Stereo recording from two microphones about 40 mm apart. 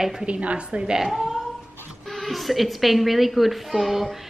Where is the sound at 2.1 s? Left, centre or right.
Centre.